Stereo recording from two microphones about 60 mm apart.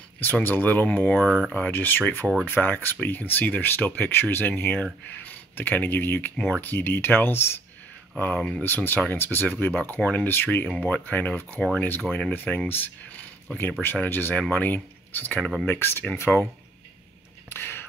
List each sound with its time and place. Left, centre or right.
0.2 s speech: left
8.4 s speech: centre
8.6 s speech: left
17.5 s a sound: left